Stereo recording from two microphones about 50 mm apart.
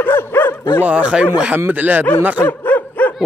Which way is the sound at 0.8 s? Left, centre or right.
Right.